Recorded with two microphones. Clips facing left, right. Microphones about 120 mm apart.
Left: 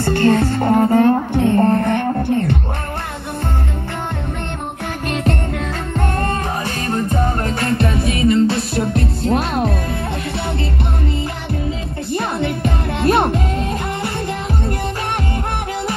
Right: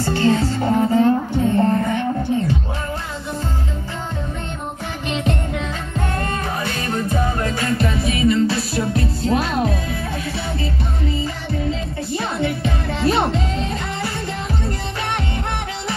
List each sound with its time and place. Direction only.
0.0 s music: 55° left (ahead or behind)
6.9 s music: 45° left (ahead or behind)
12.1 s music: 55° left (ahead or behind)